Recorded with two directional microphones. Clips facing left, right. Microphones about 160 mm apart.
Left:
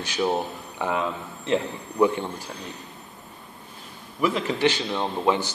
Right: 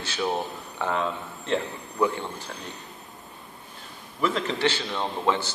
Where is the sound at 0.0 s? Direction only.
15° left (ahead or behind).